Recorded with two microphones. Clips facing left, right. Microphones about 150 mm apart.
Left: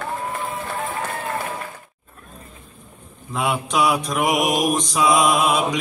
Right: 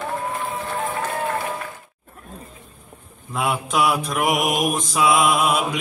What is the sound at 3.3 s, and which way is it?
Mantra, centre (ahead or behind).